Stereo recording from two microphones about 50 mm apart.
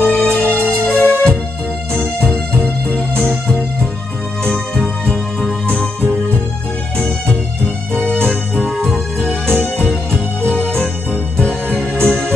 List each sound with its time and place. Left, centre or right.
0.0 s music: left
2.3 s music: centre
4.5 s music: centre
7.9 s music: centre
8.6 s music: centre
10.5 s music: left